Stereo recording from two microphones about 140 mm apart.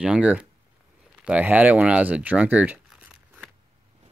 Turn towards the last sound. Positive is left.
turn(degrees=-10)  # may be behind; listen again after turning